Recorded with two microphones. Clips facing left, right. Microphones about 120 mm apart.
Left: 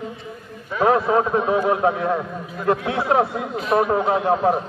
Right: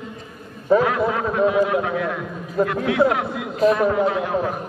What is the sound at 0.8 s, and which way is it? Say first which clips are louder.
A man's voice: left 4 dB; 30° left (ahead or behind).